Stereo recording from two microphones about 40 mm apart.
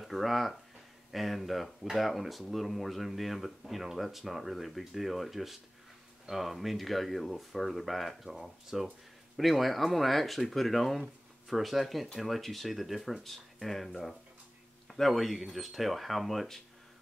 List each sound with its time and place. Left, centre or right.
0.0 s a man's voice: centre